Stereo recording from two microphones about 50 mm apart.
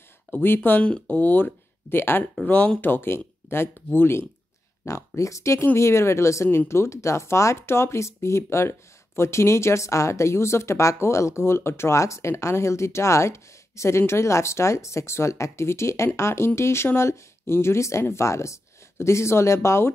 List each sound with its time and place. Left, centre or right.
0.3 s speech: left
0.8 s speech: left
1.2 s speech: left
2.4 s speech: left
2.8 s speech: left
4.8 s speech: left
5.8 s speech: left